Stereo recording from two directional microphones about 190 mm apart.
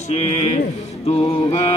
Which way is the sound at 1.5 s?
35° left (ahead or behind).